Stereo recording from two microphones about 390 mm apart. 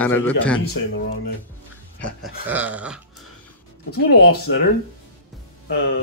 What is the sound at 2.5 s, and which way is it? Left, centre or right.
Speech, centre.